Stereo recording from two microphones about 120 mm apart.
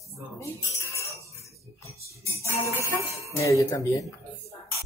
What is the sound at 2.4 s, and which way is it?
Speech, 25° left (ahead or behind).